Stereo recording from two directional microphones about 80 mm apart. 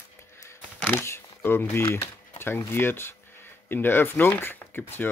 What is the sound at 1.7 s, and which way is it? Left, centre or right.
Speech, left.